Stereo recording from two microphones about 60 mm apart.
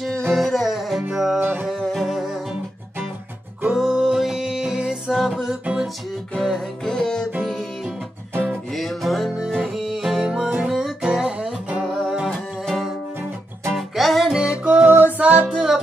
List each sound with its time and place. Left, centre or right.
0.3 s music: centre
1.4 s music: right
1.7 s music: centre
3.6 s music: centre
8.7 s music: centre
10.2 s music: centre
10.7 s music: centre
13.7 s music: centre
14.6 s music: right
15.5 s music: centre